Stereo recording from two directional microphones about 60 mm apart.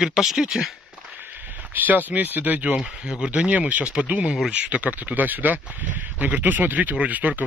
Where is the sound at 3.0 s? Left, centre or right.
Centre.